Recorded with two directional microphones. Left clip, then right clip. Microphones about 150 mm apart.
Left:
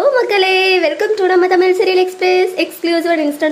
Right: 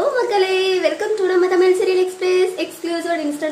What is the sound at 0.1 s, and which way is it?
A woman's voice, 40° left (ahead or behind).